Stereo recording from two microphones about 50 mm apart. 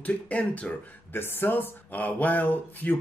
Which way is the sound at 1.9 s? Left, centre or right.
Left.